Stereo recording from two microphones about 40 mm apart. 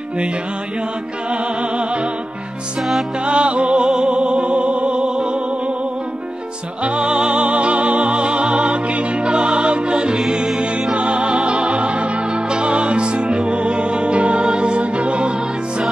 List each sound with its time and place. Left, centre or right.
3.3 s music: right
6.8 s music: right